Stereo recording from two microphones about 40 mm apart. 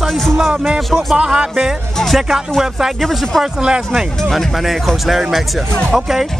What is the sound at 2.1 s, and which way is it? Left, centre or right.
Speech, centre.